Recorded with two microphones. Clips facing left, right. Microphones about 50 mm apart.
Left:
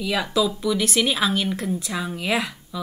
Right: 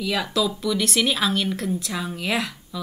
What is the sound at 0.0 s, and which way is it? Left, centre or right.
Speech, centre.